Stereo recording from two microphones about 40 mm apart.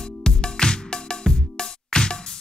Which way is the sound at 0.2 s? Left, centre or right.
Left.